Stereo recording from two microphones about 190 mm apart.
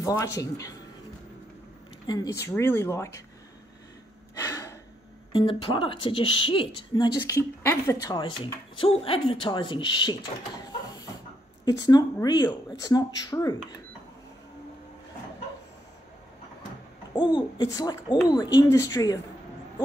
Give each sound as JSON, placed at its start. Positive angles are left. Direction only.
{"t": 0.0, "sound": "speech", "side_deg": 15}
{"t": 2.0, "sound": "speech", "side_deg": 15}
{"t": 4.4, "sound": "gasp", "side_deg": 20}
{"t": 5.3, "sound": "a woman's voice", "side_deg": 30}
{"t": 8.7, "sound": "a woman's voice", "side_deg": 30}
{"t": 11.6, "sound": "a woman's voice", "side_deg": 20}
{"t": 17.1, "sound": "a woman's voice", "side_deg": 25}